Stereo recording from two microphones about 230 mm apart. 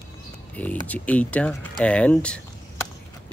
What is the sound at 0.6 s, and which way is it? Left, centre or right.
Speech, centre.